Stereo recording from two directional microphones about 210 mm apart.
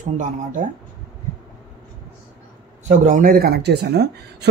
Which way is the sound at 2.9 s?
35° right (ahead or behind).